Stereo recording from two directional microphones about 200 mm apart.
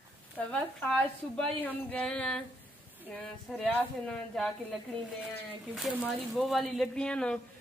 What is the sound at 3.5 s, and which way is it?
Speech, 5° left (ahead or behind).